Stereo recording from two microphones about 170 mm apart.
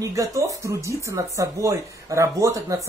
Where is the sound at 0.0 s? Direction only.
20° right (ahead or behind).